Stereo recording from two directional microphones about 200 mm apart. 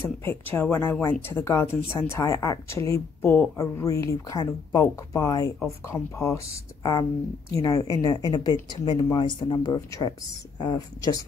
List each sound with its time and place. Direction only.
0.2 s speech: 10° left (ahead or behind)